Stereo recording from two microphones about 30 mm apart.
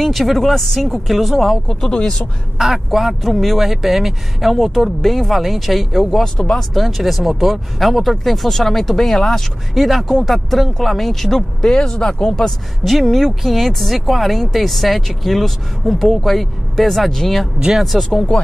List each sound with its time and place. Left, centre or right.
0.0 s speech: centre
1.9 s speech: left
2.6 s speech: centre
3.2 s speech: centre
9.1 s speech: left
9.8 s speech: centre; by 12.1 s left
12.1 s speech: left
12.8 s speech: centre